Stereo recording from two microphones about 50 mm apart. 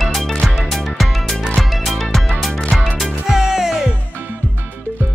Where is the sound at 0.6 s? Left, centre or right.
Centre.